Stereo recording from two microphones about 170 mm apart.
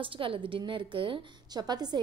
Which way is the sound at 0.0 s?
30° right (ahead or behind).